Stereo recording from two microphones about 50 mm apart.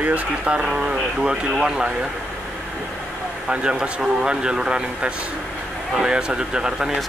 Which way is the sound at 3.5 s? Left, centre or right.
Centre.